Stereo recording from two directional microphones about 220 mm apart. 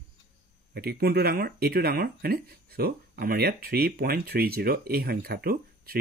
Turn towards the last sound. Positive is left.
turn(degrees=-45)  # may be behind; listen again after turning